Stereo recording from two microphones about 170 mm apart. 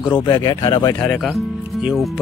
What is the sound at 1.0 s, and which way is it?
Speech, centre (ahead or behind).